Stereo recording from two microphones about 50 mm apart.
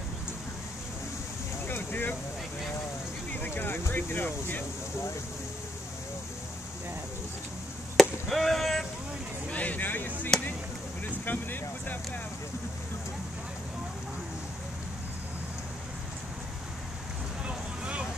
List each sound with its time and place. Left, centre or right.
1.7 s vehicle: left
3.4 s speech: left
8.0 s chop: centre
9.5 s a sound: left
11.1 s speech: left
17.5 s vehicle: right